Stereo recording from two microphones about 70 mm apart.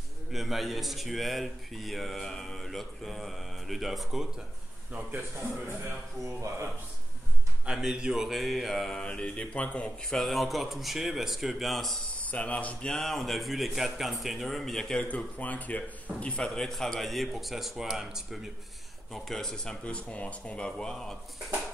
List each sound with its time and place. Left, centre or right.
0.3 s speech: centre
6.2 s speech: right
7.7 s speech: centre
9.0 s speech: centre
10.1 s speech: centre
12.3 s speech: centre
12.9 s speech: centre
15.0 s speech: left
16.4 s speech: centre
19.1 s speech: centre